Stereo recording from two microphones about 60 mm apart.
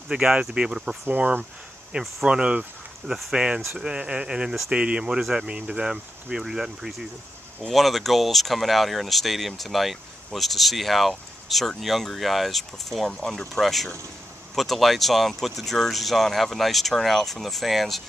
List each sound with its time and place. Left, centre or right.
0.1 s speech: centre